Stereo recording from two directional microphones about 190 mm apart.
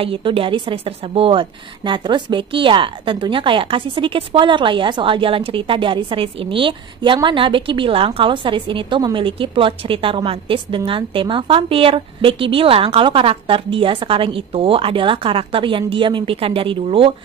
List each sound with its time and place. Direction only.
0.0 s a woman's voice: 30° right (ahead or behind)